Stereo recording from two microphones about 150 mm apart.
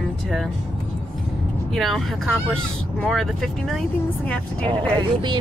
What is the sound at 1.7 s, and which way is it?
Speech, centre (ahead or behind).